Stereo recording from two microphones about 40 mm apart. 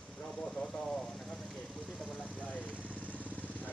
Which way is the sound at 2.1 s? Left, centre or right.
Left.